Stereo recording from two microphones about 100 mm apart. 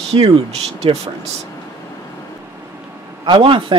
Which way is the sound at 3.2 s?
50° right (ahead or behind).